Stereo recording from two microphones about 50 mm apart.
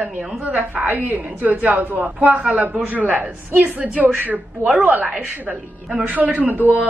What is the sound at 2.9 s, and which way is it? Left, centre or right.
A woman's voice, right.